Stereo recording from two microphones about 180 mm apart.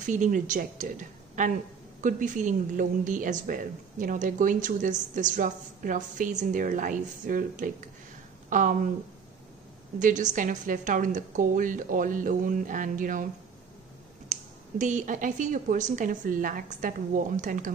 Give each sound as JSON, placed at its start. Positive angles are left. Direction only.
{"t": 0.0, "sound": "a woman's voice", "side_deg": -45}
{"t": 9.9, "sound": "a woman's voice", "side_deg": -45}
{"t": 14.3, "sound": "a woman's voice", "side_deg": -40}